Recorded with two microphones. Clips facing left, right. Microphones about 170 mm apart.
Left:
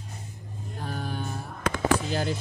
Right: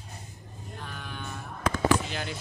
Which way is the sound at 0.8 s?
40° left (ahead or behind).